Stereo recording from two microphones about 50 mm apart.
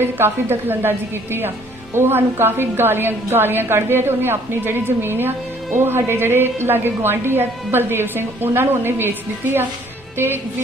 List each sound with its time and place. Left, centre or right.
0.0 s a woman's voice: right